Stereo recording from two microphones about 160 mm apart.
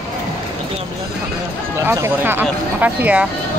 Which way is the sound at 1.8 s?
15° right (ahead or behind).